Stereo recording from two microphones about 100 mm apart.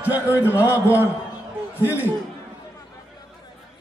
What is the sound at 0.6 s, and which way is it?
Speech, 20° right (ahead or behind).